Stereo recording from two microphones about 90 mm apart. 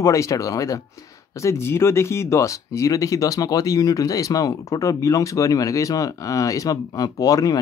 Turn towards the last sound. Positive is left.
turn(degrees=40)  # may be behind; listen again after turning